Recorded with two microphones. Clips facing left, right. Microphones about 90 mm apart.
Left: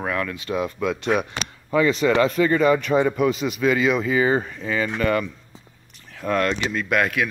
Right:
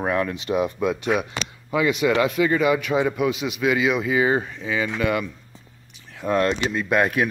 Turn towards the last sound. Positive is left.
turn(degrees=-30)  # may be behind; listen again after turning